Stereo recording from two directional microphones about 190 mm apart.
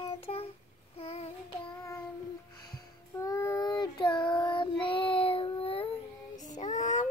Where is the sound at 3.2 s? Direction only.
15° left (ahead or behind).